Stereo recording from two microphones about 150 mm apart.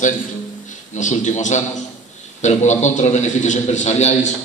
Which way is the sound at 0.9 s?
55° left (ahead or behind).